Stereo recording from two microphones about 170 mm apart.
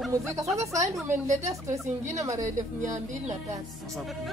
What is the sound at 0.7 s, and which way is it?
Speech, 15° right (ahead or behind).